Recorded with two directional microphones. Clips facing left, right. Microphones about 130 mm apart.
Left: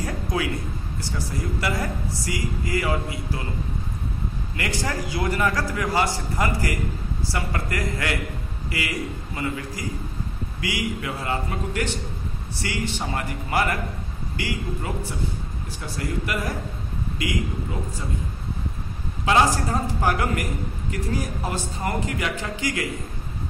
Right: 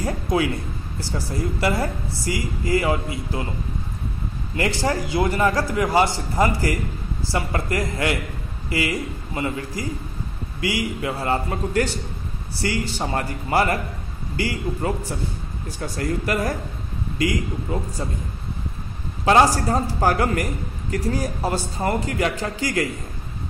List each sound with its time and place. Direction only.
0.0 s a man's voice: 30° right (ahead or behind)
1.6 s a man's voice: 30° right (ahead or behind)
4.6 s a man's voice: 30° right (ahead or behind)
16.0 s speech: 45° right (ahead or behind)
19.2 s speech: 40° right (ahead or behind)
21.5 s speech: 35° right (ahead or behind)